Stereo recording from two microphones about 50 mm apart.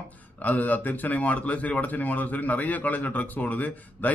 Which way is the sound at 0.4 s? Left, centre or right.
Left.